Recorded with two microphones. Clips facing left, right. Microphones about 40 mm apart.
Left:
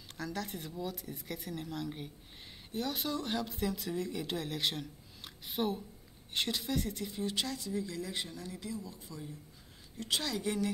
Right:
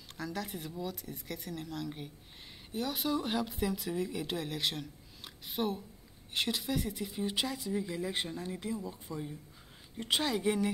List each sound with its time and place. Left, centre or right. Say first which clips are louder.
0.2 s speech: right 1 dB; centre